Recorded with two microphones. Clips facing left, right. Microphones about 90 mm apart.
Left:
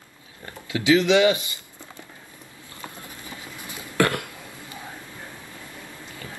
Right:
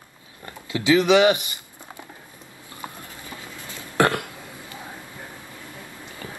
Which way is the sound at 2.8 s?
20° right (ahead or behind).